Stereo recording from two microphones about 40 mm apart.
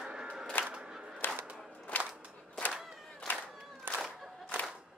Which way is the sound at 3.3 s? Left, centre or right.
Left.